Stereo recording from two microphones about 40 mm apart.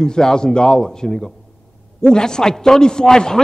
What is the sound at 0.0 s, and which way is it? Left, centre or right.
A man's voice, centre.